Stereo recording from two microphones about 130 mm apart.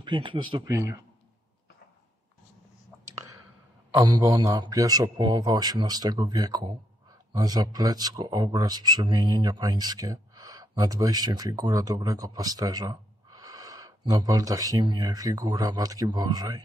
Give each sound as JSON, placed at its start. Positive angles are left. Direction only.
{"t": 0.0, "sound": "a man's voice", "side_deg": -40}
{"t": 0.7, "sound": "speech", "side_deg": -25}
{"t": 3.1, "sound": "clicking", "side_deg": -25}
{"t": 3.9, "sound": "a man's voice", "side_deg": -25}